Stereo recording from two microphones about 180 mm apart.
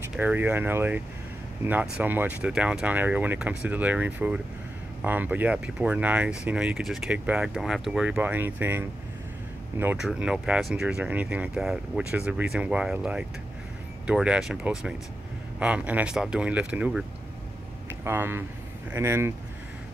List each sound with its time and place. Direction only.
0.1 s speech: 10° right (ahead or behind)
18.0 s speech: 10° right (ahead or behind)